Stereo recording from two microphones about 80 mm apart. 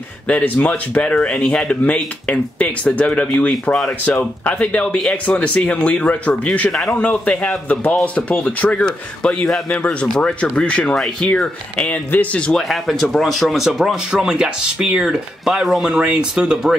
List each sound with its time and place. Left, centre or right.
0.3 s speech: centre
12.6 s speech: centre